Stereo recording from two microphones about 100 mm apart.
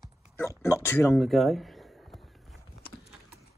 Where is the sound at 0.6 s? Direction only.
25° left (ahead or behind).